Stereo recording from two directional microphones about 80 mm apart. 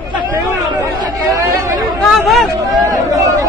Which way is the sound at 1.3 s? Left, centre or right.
Right.